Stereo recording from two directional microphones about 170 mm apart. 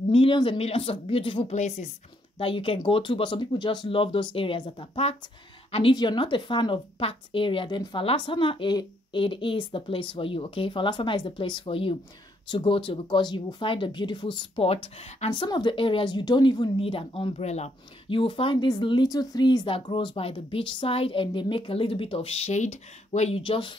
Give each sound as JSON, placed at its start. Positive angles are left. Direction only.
{"t": 0.1, "sound": "speech", "side_deg": 30}
{"t": 1.5, "sound": "a woman's voice", "side_deg": 40}